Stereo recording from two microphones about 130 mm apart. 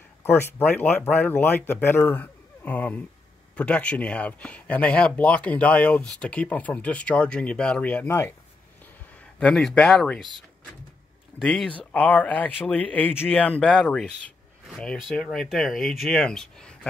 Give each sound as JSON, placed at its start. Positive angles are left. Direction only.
{"t": 0.2, "sound": "speech", "side_deg": 15}
{"t": 8.1, "sound": "speech", "side_deg": 20}
{"t": 9.4, "sound": "speech", "side_deg": 5}